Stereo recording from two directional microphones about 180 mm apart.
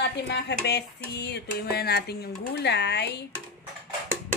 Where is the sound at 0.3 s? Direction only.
70° left (ahead or behind).